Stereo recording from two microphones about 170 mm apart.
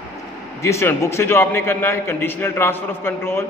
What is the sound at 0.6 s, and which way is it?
A man's voice, 15° left (ahead or behind).